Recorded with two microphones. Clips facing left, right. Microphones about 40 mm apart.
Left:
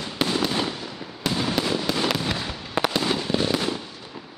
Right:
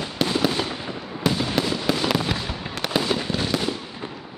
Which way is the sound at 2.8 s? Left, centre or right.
Left.